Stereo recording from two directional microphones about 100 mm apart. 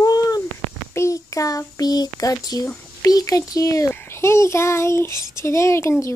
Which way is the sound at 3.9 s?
25° left (ahead or behind).